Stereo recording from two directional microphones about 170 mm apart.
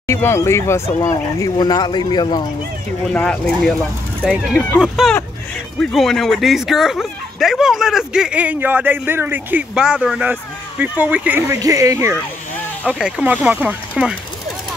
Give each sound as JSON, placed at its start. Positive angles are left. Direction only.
{"t": 0.0, "sound": "speech", "side_deg": 15}
{"t": 3.1, "sound": "speech", "side_deg": 5}
{"t": 4.2, "sound": "speech", "side_deg": -5}